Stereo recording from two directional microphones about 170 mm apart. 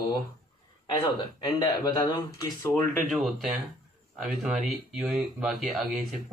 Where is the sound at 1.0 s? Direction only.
25° left (ahead or behind).